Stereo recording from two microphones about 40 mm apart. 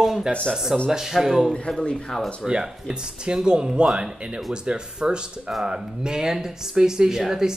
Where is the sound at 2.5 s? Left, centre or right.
Centre.